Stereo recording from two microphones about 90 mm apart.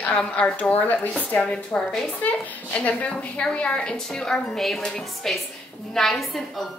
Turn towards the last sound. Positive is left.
turn(degrees=5)  # may be behind; listen again after turning